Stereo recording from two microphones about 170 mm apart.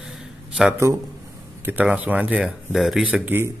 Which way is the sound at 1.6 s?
10° right (ahead or behind).